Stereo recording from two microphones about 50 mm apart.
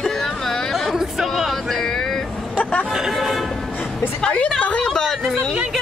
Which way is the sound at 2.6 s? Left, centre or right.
Left.